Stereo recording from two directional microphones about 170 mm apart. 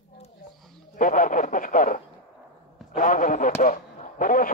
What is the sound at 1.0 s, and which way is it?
A man's voice, 50° left (ahead or behind).